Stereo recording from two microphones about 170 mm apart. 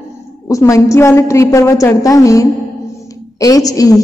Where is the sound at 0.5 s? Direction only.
20° left (ahead or behind).